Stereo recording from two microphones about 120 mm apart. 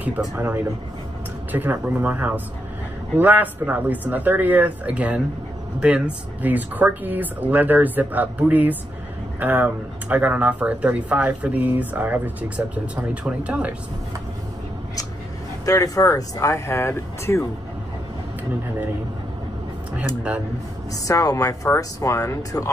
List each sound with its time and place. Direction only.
1.5 s speech: 15° right (ahead or behind)
15.6 s speech: 30° left (ahead or behind)
20.9 s speech: 30° left (ahead or behind)